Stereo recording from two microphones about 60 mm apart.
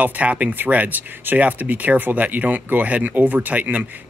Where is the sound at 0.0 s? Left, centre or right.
Right.